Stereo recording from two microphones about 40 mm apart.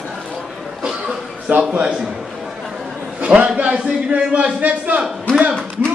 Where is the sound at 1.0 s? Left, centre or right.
Right.